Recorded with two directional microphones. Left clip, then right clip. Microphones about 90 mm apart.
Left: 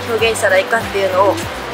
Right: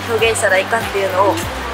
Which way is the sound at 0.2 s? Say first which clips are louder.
Left 1 dB; 10° left (ahead or behind).